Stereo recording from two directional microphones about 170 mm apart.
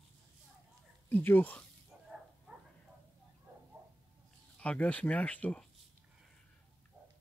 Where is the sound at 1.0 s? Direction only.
10° left (ahead or behind).